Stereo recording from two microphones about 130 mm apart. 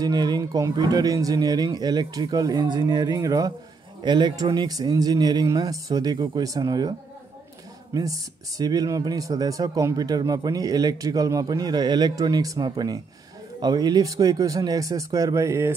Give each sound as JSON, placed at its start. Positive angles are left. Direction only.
{"t": 0.0, "sound": "speech", "side_deg": -30}